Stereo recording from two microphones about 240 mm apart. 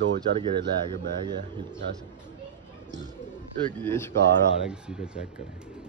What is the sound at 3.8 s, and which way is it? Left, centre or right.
Speech, centre.